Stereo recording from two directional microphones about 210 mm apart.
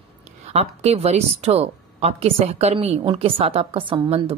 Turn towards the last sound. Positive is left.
turn(degrees=-25)  # may be behind; listen again after turning